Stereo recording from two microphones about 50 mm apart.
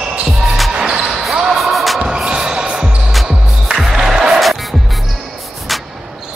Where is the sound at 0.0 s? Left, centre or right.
Centre.